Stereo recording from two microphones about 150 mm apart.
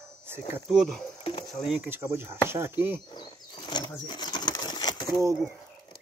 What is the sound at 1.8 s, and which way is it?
Speech, 15° right (ahead or behind).